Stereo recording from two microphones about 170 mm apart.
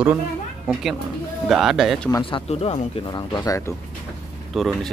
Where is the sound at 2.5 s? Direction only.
40° left (ahead or behind); by 3.7 s 20° left (ahead or behind).